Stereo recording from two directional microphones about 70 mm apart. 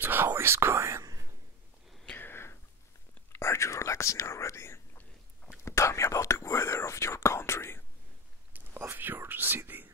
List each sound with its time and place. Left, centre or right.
0.0 s whispering: right
2.1 s whispering: left
8.5 s whispering: right